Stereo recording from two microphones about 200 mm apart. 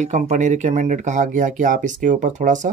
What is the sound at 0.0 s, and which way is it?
Speech, 35° right (ahead or behind).